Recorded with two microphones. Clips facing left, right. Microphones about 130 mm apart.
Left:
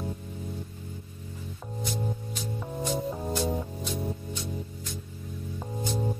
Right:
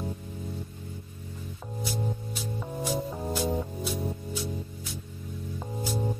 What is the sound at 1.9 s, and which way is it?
Music, 5° right (ahead or behind).